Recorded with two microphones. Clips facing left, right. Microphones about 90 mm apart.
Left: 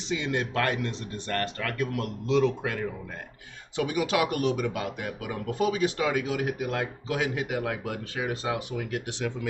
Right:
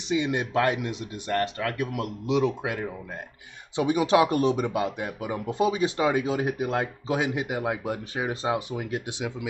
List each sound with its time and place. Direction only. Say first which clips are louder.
0.1 s speech: right 4 dB; 15° right (ahead or behind)